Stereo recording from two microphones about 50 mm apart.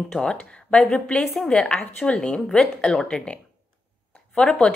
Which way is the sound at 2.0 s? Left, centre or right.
Left.